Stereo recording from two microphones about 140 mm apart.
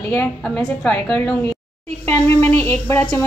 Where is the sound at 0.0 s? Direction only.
20° left (ahead or behind).